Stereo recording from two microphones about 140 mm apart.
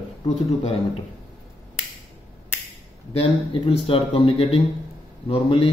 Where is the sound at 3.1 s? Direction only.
40° left (ahead or behind).